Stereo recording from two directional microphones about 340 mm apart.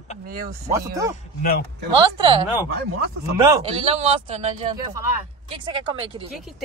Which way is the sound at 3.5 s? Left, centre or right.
Centre.